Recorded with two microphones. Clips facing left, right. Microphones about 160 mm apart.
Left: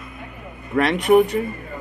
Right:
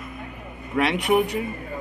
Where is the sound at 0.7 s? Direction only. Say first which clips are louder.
Left 3 dB; 10° right (ahead or behind).